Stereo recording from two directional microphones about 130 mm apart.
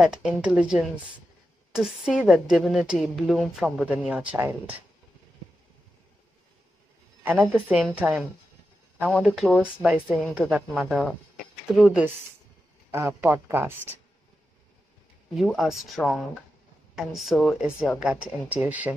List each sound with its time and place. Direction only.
0.0 s a woman's voice: 5° right (ahead or behind)
7.6 s a woman's voice: 10° right (ahead or behind)
9.8 s a woman's voice: 10° right (ahead or behind)
12.9 s speech: 20° right (ahead or behind)
15.3 s a woman's voice: centre (ahead or behind)